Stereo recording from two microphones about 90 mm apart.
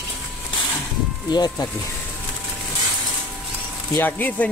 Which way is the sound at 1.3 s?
50° left (ahead or behind).